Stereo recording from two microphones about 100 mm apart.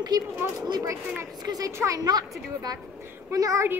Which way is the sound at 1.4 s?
40° right (ahead or behind).